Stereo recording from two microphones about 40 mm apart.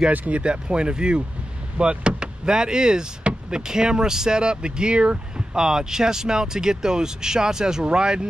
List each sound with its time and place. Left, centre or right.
0.3 s speech: right